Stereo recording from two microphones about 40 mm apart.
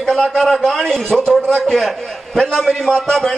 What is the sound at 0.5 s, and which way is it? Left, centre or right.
Speech, centre.